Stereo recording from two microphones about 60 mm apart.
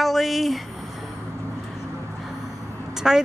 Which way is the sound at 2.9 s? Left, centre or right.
Centre.